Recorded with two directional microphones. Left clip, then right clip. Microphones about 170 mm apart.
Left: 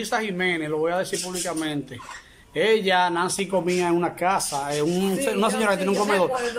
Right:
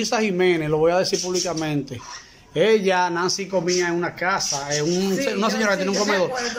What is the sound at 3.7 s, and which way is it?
A man's voice, 10° left (ahead or behind).